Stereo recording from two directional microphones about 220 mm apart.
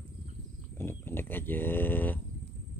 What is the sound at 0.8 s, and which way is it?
Speech, 10° left (ahead or behind).